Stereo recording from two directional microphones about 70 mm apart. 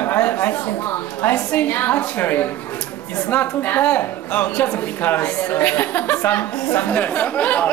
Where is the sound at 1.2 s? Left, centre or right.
Left.